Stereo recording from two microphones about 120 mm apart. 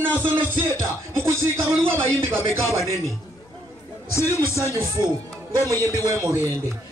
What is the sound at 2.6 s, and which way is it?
Music, 25° left (ahead or behind).